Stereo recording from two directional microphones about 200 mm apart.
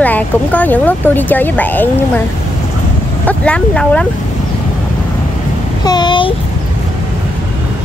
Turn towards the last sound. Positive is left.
turn(degrees=25)  # may be behind; listen again after turning